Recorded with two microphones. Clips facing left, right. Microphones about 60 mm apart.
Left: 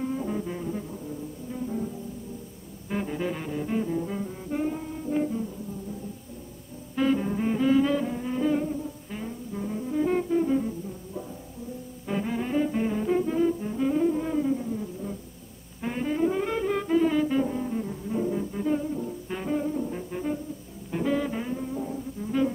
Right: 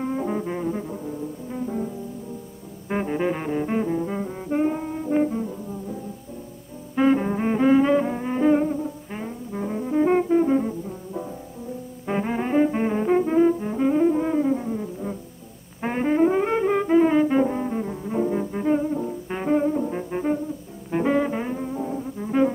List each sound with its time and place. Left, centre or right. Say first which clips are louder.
0.4 s brass instrument: right 5 dB; right
1.5 s music: right 3 dB; right
2.9 s music: right 6 dB; right
7.0 s music: right 5 dB; right
12.1 s brass instrument: right 4 dB; right
13.7 s music: right 4 dB; right
14.5 s music: right 4 dB; right
15.8 s brass instrument: right 6 dB; right
17.7 s music: right 4 dB; right
21.9 s brass instrument: right 6 dB; right